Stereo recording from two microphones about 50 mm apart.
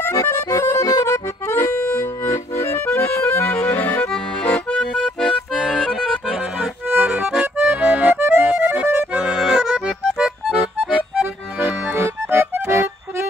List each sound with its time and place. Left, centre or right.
0.0 s accordion: left
1.5 s music: left
2.6 s accordion: left
3.7 s music: left
4.7 s accordion: centre
5.2 s accordion: centre
7.1 s music: centre
7.3 s accordion: centre
8.2 s music: right
8.5 s accordion: right; by 9.9 s centre
10.1 s music: right
12.0 s music: right